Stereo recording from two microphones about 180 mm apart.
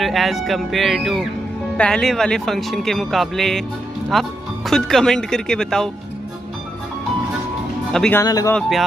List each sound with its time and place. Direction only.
0.0 s speech: centre (ahead or behind)
7.9 s speech: 5° left (ahead or behind)
8.2 s speech: 15° left (ahead or behind)
8.5 s speech: centre (ahead or behind)